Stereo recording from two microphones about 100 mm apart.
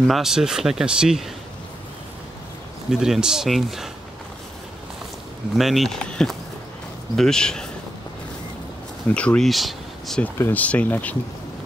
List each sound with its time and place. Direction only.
0.0 s speech: centre (ahead or behind)
2.9 s speech: 5° right (ahead or behind)
5.6 s speech: centre (ahead or behind)
9.1 s speech: 10° left (ahead or behind)
9.5 s speech: centre (ahead or behind)
10.2 s speech: 20° left (ahead or behind)